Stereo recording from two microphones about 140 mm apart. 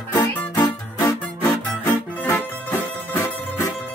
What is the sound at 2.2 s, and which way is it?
Music, 10° left (ahead or behind).